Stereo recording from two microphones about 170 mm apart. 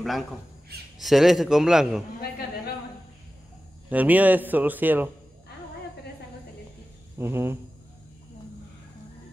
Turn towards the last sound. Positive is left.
turn(degrees=-15)  # may be behind; listen again after turning